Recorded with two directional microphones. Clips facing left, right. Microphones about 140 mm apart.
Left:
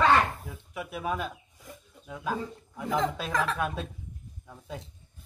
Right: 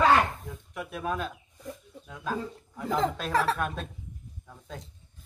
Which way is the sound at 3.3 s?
35° right (ahead or behind).